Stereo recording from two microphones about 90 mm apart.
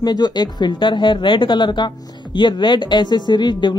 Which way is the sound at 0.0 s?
50° left (ahead or behind).